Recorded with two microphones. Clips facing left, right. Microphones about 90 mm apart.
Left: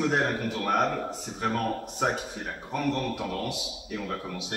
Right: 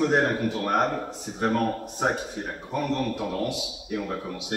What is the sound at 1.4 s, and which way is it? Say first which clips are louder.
Speech: right 4 dB; 30° right (ahead or behind).